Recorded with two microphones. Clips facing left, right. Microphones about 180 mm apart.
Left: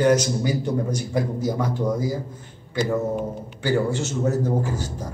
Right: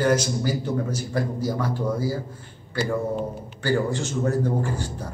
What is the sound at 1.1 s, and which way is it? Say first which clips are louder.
A man's voice: left 1 dB; 25° left (ahead or behind).